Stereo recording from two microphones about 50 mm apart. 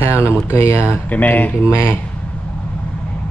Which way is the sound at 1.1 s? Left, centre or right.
Left.